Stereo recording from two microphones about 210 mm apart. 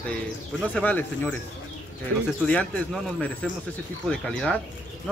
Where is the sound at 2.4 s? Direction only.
5° left (ahead or behind).